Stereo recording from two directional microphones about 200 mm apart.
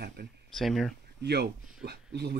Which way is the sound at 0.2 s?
55° right (ahead or behind).